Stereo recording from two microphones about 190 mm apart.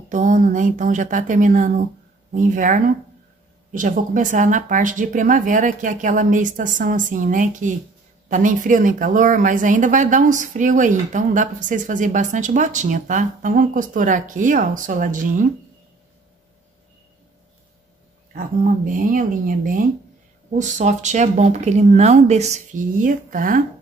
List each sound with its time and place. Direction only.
0.1 s speech: 40° right (ahead or behind)
18.9 s speech: 45° right (ahead or behind)